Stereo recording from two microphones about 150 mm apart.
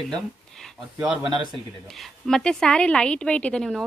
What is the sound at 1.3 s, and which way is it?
Speech, 30° right (ahead or behind).